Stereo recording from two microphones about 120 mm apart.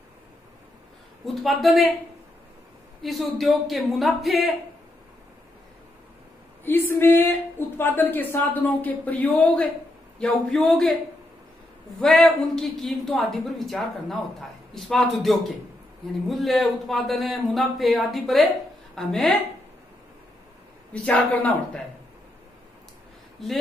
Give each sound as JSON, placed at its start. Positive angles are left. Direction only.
{"t": 1.2, "sound": "speech", "side_deg": 0}
{"t": 3.0, "sound": "speech", "side_deg": 0}
{"t": 6.6, "sound": "a woman's voice", "side_deg": 20}
{"t": 12.0, "sound": "speech", "side_deg": 5}
{"t": 20.9, "sound": "a woman's voice", "side_deg": 10}